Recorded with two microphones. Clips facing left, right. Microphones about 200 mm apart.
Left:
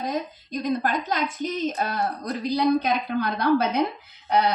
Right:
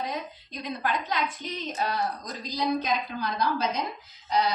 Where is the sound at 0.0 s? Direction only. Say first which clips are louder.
Left 5 dB; 45° left (ahead or behind).